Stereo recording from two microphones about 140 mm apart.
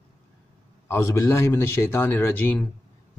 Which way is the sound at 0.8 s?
20° left (ahead or behind).